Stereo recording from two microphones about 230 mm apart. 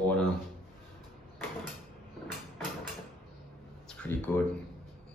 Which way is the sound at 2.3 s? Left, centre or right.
Centre.